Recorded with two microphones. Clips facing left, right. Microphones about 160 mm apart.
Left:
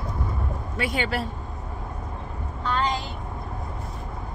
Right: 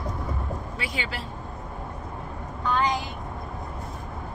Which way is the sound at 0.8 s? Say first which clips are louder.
Left 10 dB; 55° left (ahead or behind).